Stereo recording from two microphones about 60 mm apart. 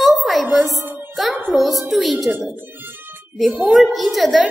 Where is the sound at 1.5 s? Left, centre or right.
Centre.